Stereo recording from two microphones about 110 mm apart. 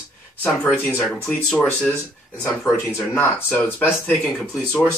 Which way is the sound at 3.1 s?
20° left (ahead or behind).